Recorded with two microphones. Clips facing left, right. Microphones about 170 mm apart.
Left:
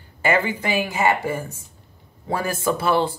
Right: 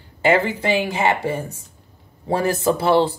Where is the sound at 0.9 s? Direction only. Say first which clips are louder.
Right 1 dB; 25° right (ahead or behind).